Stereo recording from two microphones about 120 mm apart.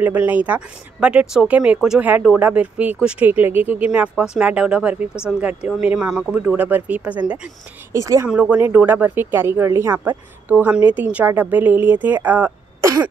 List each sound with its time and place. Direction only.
0.0 s speech: 15° right (ahead or behind)
7.9 s speech: 25° right (ahead or behind)
8.3 s speech: 10° right (ahead or behind)